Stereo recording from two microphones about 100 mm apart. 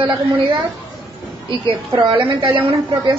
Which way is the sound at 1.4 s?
50° right (ahead or behind).